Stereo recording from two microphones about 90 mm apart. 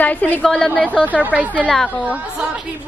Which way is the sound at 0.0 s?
15° left (ahead or behind).